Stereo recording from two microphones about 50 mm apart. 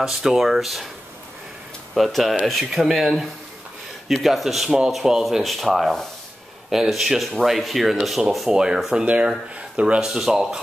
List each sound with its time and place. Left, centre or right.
0.0 s speech: centre
2.0 s speech: centre
5.4 s speech: centre
9.0 s speech: right
10.0 s speech: centre